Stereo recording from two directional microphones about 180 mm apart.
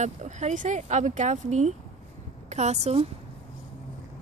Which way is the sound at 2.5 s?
40° right (ahead or behind).